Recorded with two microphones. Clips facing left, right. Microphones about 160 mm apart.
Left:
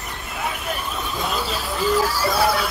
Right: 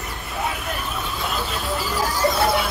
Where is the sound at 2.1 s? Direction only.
20° right (ahead or behind).